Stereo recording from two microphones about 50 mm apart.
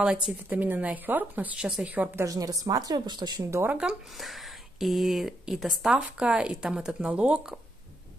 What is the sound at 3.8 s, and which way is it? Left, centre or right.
Speech, right.